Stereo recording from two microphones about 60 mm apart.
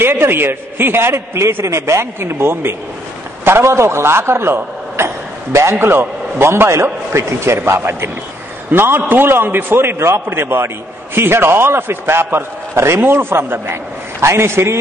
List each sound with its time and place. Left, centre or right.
0.0 s a man's voice: right